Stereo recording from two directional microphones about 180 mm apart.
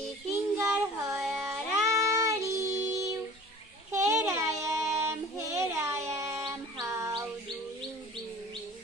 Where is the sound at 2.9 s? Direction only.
15° right (ahead or behind).